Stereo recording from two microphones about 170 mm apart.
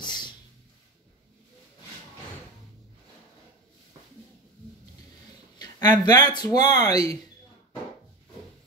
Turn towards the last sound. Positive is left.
turn(degrees=20)  # may be behind; listen again after turning